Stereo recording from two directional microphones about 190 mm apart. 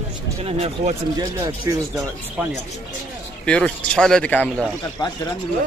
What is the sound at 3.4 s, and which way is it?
A man's voice, 5° left (ahead or behind).